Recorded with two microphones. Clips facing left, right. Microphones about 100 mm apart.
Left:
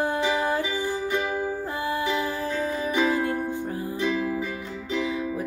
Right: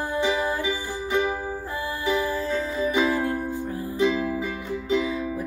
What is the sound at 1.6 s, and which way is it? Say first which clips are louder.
Music: left 1 dB; 20° left (ahead or behind).